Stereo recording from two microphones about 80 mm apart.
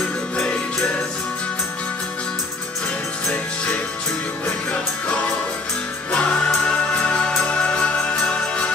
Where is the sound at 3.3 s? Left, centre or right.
Centre.